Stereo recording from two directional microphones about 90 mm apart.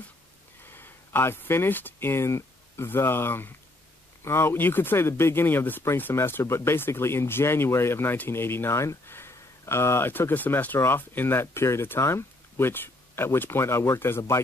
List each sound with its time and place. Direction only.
0.7 s speech: 25° left (ahead or behind)